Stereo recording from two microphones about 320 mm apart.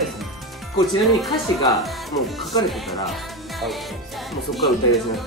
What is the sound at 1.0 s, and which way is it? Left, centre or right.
Speech, centre.